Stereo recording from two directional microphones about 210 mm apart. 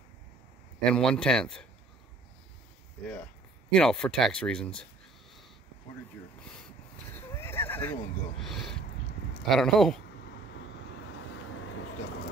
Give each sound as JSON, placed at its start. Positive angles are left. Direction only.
{"t": 0.8, "sound": "speech", "side_deg": 5}
{"t": 3.7, "sound": "speech", "side_deg": 5}
{"t": 7.2, "sound": "a sound", "side_deg": 10}
{"t": 8.4, "sound": "speech", "side_deg": 0}
{"t": 11.0, "sound": "vehicle", "side_deg": 65}